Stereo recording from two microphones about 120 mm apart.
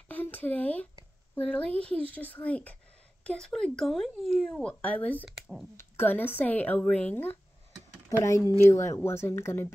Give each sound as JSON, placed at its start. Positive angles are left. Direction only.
{"t": 0.1, "sound": "a sound", "side_deg": 15}
{"t": 1.3, "sound": "speech", "side_deg": 10}
{"t": 5.3, "sound": "speech", "side_deg": 0}
{"t": 5.8, "sound": "speech", "side_deg": 20}
{"t": 8.2, "sound": "speech", "side_deg": 25}